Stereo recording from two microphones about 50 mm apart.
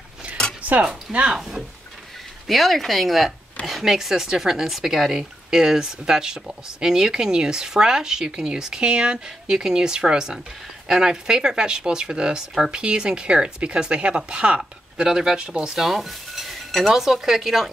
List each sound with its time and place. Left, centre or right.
0.6 s a sound: right
1.3 s speech: centre
2.4 s speech: centre; by 14.6 s right
15.0 s speech: centre
15.8 s dishes: centre